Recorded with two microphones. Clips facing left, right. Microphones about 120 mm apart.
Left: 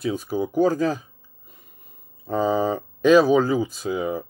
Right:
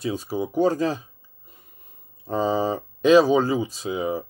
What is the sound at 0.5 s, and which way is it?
Speech, 25° right (ahead or behind).